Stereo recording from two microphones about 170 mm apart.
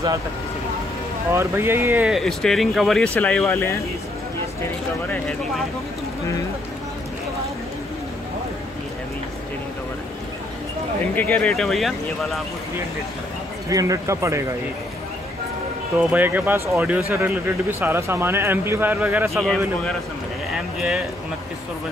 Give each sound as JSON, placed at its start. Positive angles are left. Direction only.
{"t": 1.3, "sound": "speech", "side_deg": -15}
{"t": 5.0, "sound": "speech", "side_deg": 10}
{"t": 11.1, "sound": "speech", "side_deg": 10}
{"t": 13.7, "sound": "speech", "side_deg": -20}
{"t": 16.0, "sound": "speech", "side_deg": -10}
{"t": 20.5, "sound": "speech", "side_deg": -5}